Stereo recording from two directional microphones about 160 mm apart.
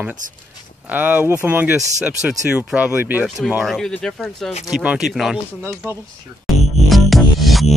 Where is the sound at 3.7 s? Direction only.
5° left (ahead or behind); by 6.0 s 10° right (ahead or behind).